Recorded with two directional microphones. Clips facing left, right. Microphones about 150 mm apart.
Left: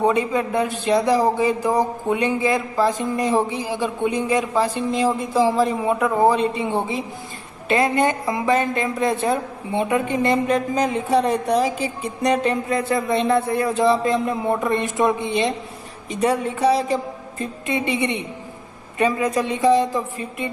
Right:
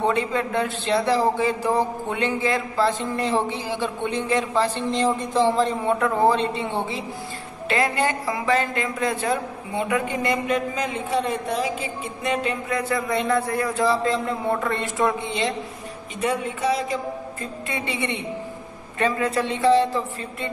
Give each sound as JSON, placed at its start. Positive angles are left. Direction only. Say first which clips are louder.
{"t": 0.0, "sound": "a man's voice", "louder": "left 3 dB", "side_deg": 15}
{"t": 10.5, "sound": "a man's voice", "louder": "left 4 dB", "side_deg": 40}
{"t": 12.6, "sound": "speech", "louder": "left 3 dB", "side_deg": 25}
{"t": 16.2, "sound": "a man's voice", "louder": "left 5 dB", "side_deg": 35}
{"t": 17.6, "sound": "a man's voice", "louder": "left 6 dB", "side_deg": 20}